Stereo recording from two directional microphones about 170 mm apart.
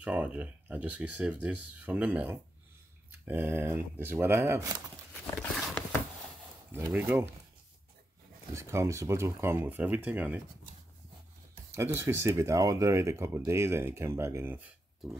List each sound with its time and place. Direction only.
0.0 s speech: 10° right (ahead or behind)
5.2 s a sound: 10° left (ahead or behind)
6.7 s speech: 10° right (ahead or behind)
8.5 s speech: 15° right (ahead or behind)
11.7 s speech: 15° right (ahead or behind)